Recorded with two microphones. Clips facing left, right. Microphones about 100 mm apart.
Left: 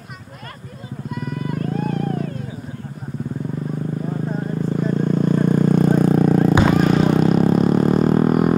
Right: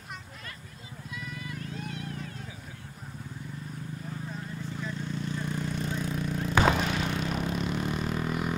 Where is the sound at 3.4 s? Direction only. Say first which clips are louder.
Left 15 dB; 55° left (ahead or behind).